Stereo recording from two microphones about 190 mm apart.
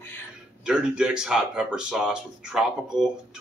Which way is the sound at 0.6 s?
5° right (ahead or behind).